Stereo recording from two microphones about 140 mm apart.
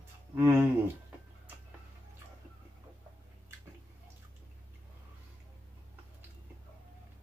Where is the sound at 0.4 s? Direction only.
15° right (ahead or behind).